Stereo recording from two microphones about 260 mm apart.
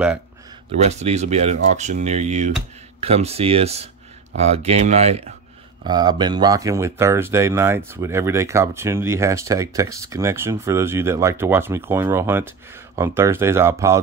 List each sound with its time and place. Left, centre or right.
0.7 s speech: right